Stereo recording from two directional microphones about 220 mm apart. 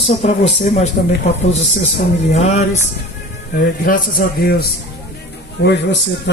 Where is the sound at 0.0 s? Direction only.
30° left (ahead or behind).